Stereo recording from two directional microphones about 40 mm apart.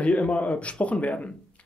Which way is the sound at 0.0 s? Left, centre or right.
Left.